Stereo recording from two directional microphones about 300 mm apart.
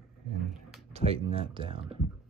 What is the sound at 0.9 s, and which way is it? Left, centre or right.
Speech, centre.